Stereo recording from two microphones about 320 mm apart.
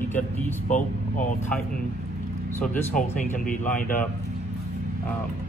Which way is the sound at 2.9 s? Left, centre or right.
Left.